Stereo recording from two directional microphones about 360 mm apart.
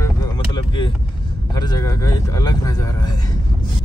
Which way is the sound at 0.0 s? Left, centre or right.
Centre.